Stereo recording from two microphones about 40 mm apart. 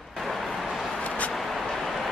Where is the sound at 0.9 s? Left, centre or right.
Left.